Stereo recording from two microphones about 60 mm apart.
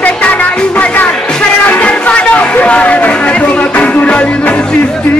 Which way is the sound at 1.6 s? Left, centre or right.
Left.